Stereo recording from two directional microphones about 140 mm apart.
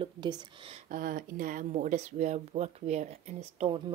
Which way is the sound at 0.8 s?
80° right.